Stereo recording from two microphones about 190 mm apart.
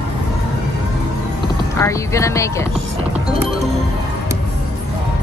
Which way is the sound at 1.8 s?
15° left (ahead or behind).